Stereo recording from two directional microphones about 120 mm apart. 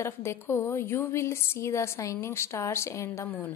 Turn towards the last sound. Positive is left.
turn(degrees=20)  # may be behind; listen again after turning